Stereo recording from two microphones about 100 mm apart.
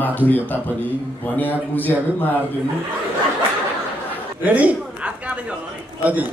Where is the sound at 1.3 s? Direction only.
20° left (ahead or behind).